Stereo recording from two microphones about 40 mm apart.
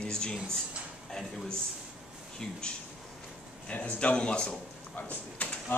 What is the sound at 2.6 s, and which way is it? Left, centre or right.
Speech, left.